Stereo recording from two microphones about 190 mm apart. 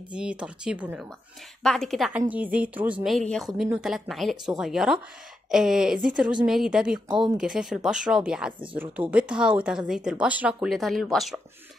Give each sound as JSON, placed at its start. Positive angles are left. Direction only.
{"t": 0.1, "sound": "a woman's voice", "side_deg": -5}
{"t": 7.1, "sound": "speech", "side_deg": -25}
{"t": 7.3, "sound": "a woman's voice", "side_deg": -5}